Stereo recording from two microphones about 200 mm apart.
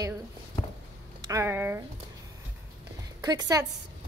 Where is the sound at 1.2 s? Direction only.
15° right (ahead or behind).